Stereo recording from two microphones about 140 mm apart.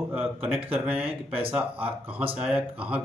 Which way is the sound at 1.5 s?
10° right (ahead or behind).